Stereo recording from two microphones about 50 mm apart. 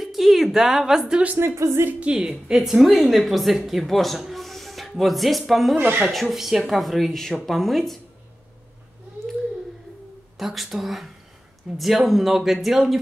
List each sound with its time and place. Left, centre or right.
0.0 s a sound: centre
1.3 s speech: right
1.6 s speech: right
2.0 s a woman's voice: centre
5.8 s speech: right
6.2 s a woman's voice: centre
10.3 s speech: centre